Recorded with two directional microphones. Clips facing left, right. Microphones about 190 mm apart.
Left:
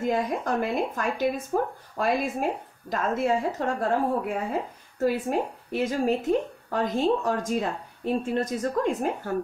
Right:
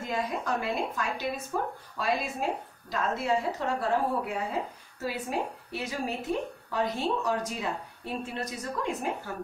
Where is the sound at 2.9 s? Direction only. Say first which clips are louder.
Left 4 dB; 50° left (ahead or behind).